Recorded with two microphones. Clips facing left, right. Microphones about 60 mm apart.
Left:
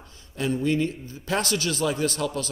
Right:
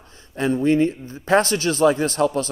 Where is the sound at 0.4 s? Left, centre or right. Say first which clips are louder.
Right 6 dB; right.